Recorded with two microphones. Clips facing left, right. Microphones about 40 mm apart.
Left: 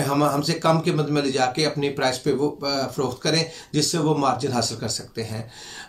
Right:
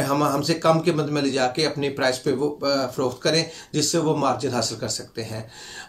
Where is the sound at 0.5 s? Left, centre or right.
Centre.